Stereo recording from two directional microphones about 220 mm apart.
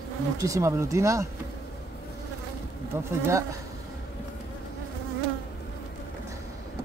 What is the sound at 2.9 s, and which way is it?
Speech, 10° right (ahead or behind).